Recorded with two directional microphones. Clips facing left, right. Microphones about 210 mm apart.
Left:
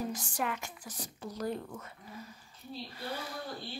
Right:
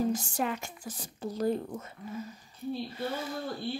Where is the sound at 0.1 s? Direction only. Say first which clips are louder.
Right 5 dB; 25° right (ahead or behind).